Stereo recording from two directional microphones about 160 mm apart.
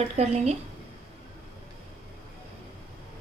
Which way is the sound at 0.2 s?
45° right (ahead or behind).